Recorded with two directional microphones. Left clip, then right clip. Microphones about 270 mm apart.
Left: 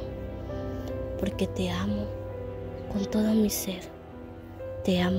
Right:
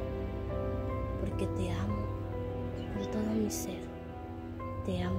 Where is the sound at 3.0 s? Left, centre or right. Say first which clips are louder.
Left 8 dB; left.